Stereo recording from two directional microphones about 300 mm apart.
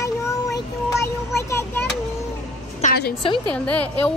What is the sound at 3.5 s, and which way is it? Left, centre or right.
Speech, centre.